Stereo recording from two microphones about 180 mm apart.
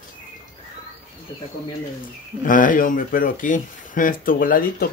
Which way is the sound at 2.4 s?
45° left (ahead or behind).